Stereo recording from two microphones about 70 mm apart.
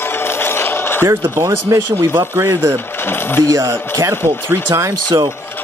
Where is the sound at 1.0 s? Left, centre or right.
Right.